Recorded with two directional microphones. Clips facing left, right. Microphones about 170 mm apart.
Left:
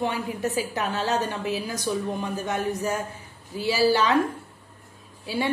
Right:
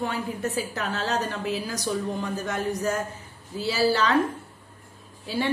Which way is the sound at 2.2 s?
20° left (ahead or behind).